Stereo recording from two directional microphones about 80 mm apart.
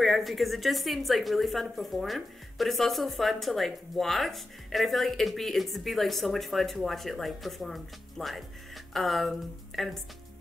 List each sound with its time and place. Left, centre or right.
0.0 s a woman's voice: centre